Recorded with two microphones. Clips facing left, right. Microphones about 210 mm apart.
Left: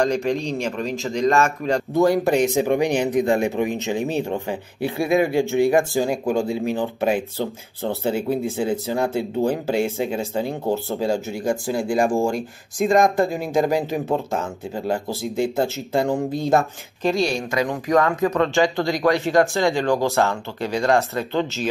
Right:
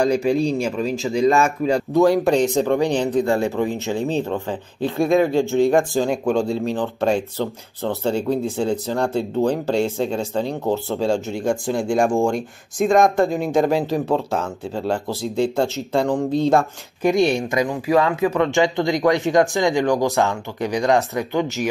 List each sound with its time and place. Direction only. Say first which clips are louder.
0.7 s speech: right 3 dB; 5° right (ahead or behind)
2.3 s speech: right 1 dB; 15° left (ahead or behind)
6.0 s speech: right 2 dB; centre (ahead or behind)
17.0 s speech: right 4 dB; 20° right (ahead or behind)
17.6 s speech: left 1 dB; 10° right (ahead or behind)